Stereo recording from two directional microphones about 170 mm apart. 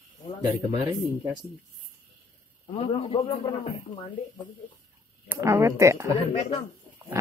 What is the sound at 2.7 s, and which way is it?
A man's voice, 35° left (ahead or behind).